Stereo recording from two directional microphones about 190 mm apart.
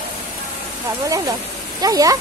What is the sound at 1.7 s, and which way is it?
Speech, 20° right (ahead or behind).